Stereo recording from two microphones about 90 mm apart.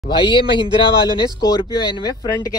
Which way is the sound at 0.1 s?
65° left (ahead or behind).